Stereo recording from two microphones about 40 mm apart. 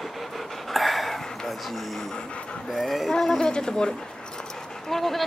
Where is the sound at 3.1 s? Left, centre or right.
Centre.